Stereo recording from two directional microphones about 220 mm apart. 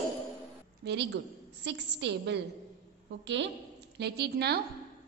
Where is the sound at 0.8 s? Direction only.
50° right (ahead or behind).